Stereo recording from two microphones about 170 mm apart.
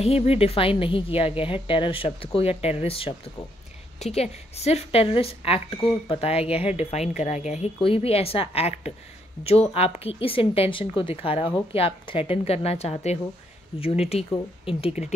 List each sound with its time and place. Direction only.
0.0 s speech: 35° left (ahead or behind)